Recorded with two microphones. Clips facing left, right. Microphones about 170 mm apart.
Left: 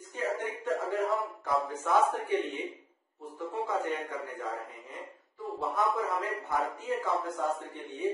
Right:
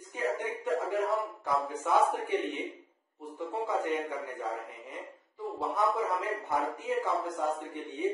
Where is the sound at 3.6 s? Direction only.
15° right (ahead or behind).